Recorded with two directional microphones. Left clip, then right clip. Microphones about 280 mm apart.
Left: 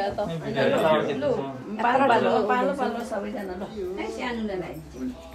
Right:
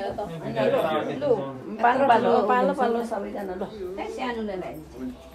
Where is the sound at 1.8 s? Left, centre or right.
Right.